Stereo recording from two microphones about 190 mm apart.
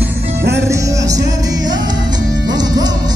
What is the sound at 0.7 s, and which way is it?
Music, 15° right (ahead or behind).